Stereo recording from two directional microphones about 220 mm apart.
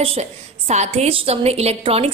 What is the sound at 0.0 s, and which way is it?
A woman's voice, 30° right (ahead or behind).